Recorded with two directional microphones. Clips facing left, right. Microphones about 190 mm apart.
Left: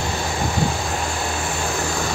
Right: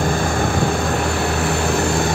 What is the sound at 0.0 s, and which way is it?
Vehicle, 55° right (ahead or behind).